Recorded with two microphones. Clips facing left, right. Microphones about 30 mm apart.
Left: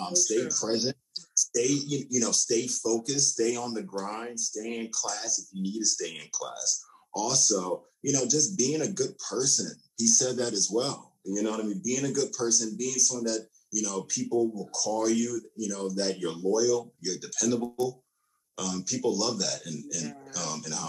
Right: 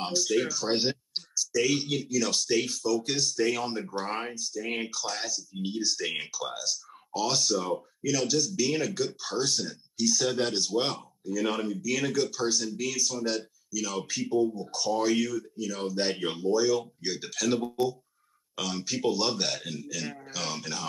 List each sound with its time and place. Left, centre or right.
0.0 s speech: right